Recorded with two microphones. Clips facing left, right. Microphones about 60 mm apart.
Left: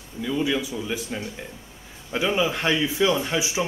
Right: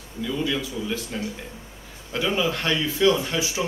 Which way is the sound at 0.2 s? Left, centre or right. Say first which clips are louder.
Left 2 dB; centre.